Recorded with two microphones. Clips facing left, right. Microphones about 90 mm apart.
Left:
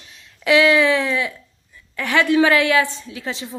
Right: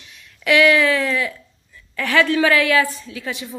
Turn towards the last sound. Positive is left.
turn(degrees=25)  # may be behind; listen again after turning